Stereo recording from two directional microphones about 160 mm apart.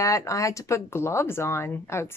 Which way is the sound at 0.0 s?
20° left (ahead or behind).